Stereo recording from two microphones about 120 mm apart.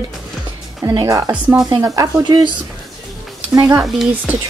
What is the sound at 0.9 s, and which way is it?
Speech, 30° right (ahead or behind).